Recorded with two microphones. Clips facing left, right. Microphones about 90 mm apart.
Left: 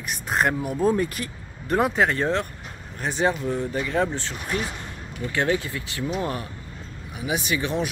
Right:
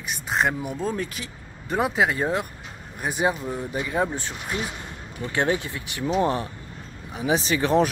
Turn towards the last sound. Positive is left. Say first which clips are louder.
# right 5 dB
turn(degrees=-40)  # may be behind; listen again after turning